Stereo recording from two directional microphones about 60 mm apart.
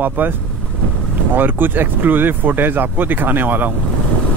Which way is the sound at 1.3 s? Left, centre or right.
Right.